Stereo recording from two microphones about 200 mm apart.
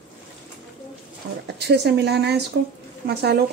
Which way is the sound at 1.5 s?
55° right (ahead or behind).